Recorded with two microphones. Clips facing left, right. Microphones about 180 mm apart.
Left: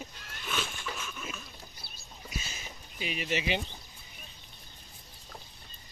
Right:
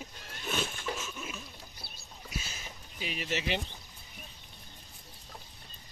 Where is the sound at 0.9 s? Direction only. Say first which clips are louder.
Right 1 dB; 20° right (ahead or behind).